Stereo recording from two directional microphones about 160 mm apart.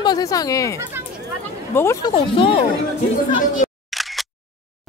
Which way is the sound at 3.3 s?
55° left (ahead or behind).